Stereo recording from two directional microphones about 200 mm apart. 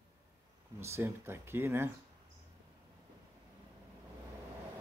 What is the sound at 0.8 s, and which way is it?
Speech, 15° right (ahead or behind).